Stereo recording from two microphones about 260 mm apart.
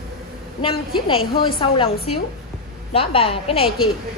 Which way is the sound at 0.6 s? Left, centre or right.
Centre.